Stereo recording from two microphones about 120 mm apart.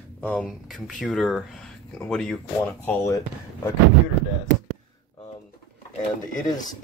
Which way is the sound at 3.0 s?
25° left (ahead or behind).